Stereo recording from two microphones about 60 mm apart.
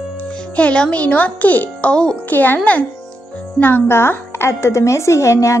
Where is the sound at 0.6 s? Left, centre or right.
Centre.